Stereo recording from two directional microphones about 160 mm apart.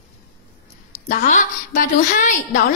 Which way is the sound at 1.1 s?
55° left (ahead or behind).